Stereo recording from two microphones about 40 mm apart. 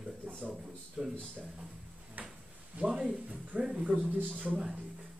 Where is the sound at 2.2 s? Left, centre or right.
Right.